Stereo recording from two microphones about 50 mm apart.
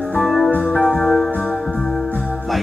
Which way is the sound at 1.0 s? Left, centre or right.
Centre.